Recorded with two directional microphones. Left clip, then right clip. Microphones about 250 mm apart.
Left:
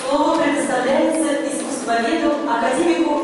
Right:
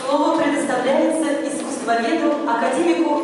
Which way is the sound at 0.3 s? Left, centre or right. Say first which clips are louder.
Left 1 dB; centre.